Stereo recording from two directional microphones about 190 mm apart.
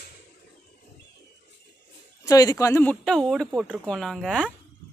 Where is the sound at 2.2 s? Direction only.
20° left (ahead or behind).